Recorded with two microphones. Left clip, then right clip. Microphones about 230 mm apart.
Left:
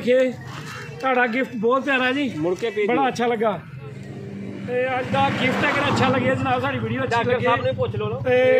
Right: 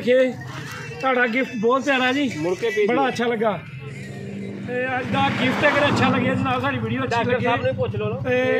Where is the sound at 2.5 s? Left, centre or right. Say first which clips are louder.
Right 2 dB; left.